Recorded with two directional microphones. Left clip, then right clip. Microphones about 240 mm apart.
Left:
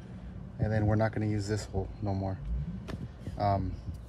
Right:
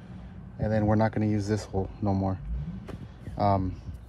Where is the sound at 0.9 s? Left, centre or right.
Centre.